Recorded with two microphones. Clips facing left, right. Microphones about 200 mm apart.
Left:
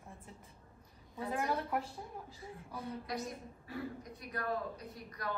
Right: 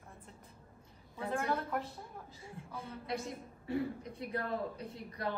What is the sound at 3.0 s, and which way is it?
A woman's voice, 25° right (ahead or behind).